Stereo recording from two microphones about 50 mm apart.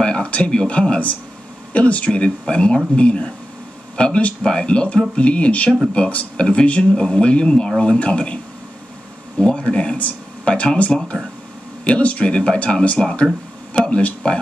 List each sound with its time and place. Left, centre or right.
0.0 s a sound: left
0.5 s speech: left
9.4 s speech: centre